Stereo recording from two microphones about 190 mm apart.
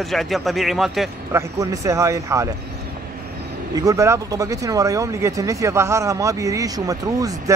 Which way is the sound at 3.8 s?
15° right (ahead or behind).